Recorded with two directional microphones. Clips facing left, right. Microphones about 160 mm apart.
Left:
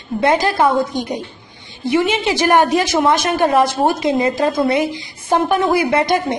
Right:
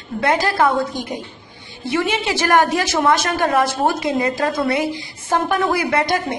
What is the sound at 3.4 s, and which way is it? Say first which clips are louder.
A woman's voice: left 6 dB; 25° left (ahead or behind).